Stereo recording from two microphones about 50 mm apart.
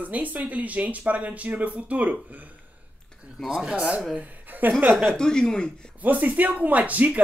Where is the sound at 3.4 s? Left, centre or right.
Centre.